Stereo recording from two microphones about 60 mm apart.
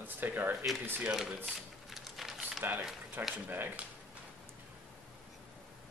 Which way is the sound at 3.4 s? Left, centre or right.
Right.